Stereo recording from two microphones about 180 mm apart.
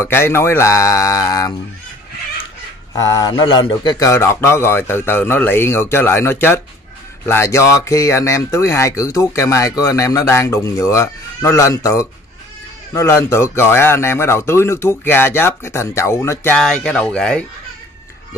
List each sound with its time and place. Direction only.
0.0 s speech: 15° left (ahead or behind)
2.9 s speech: 20° left (ahead or behind)
16.5 s speech: 5° left (ahead or behind)